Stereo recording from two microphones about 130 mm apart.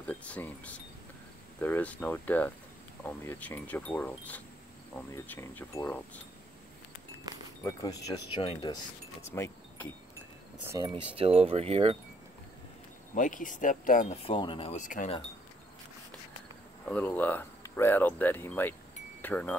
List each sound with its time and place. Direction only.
0.0 s speech: 10° left (ahead or behind)
7.6 s speech: 30° left (ahead or behind)
9.3 s wind chime: 15° left (ahead or behind)
10.8 s speech: 25° right (ahead or behind)
11.1 s speech: 45° right (ahead or behind)
13.1 s speech: 85° left
14.1 s speech: 45° left (ahead or behind)
14.7 s speech: 75° left (ahead or behind)
16.8 s speech: 10° left (ahead or behind)